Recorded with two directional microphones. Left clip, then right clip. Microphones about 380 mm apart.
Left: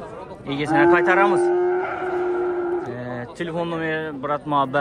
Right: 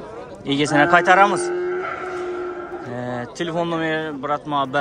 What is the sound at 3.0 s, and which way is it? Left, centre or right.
A man's voice, centre.